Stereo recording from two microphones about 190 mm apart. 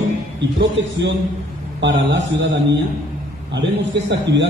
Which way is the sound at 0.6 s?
65° right (ahead or behind).